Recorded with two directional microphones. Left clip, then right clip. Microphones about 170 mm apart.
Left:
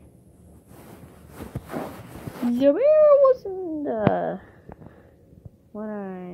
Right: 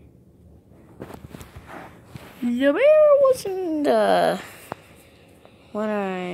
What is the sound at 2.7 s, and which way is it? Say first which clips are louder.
Speech: right 1 dB; 5° right (ahead or behind).